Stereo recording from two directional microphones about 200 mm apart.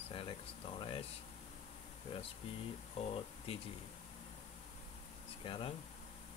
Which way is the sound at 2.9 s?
30° left (ahead or behind).